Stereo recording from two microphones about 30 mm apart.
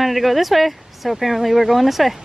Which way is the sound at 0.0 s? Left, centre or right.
Centre.